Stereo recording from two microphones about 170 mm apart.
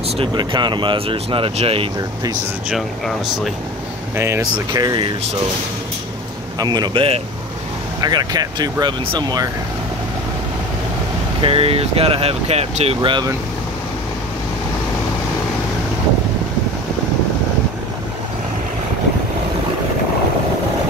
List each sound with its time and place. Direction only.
0.2 s speech: 25° right (ahead or behind)
4.2 s speech: 20° right (ahead or behind)
6.6 s speech: 25° right (ahead or behind)
11.4 s speech: 35° right (ahead or behind)